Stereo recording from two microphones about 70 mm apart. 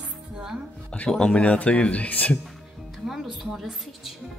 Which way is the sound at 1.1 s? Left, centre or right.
Centre.